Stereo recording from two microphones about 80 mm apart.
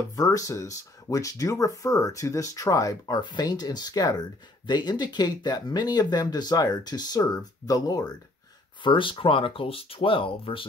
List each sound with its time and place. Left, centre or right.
0.1 s speech: left
3.2 s speech: left
8.8 s speech: left